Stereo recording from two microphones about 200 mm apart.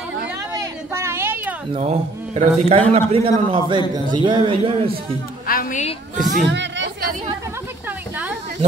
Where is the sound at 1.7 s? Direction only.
30° right (ahead or behind).